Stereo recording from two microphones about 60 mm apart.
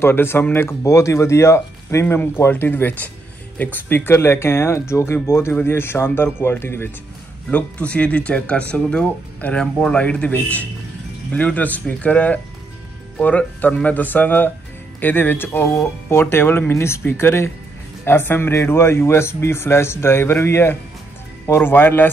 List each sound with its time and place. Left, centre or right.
0.0 s speech: left
0.8 s speech: left
2.1 s speech: left
7.5 s speech: left
15.7 s speech: left
16.7 s speech: left